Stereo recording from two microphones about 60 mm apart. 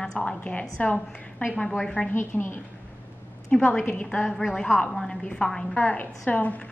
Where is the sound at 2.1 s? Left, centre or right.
Left.